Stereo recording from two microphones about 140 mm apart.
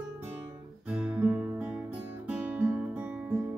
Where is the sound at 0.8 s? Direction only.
10° right (ahead or behind).